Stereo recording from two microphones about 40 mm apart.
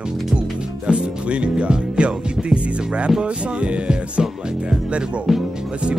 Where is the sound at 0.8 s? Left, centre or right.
Right.